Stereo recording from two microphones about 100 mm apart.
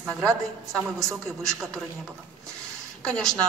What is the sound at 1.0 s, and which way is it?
Speech, centre (ahead or behind).